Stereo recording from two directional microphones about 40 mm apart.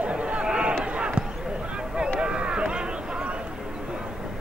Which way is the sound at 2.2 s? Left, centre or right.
Right.